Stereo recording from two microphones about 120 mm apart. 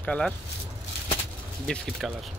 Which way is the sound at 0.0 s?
10° left (ahead or behind).